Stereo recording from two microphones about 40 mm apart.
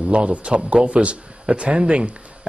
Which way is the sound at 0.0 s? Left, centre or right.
Right.